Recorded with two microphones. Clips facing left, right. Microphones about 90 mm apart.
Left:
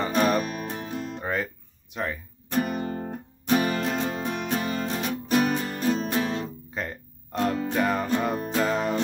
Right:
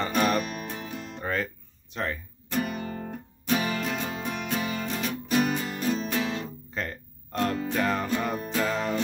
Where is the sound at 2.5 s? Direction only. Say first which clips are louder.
Left 3 dB; 40° left (ahead or behind).